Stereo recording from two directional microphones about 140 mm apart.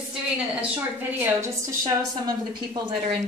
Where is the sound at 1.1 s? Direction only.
15° right (ahead or behind).